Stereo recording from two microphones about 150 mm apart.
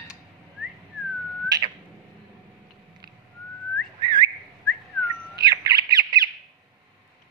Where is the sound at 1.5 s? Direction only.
25° right (ahead or behind).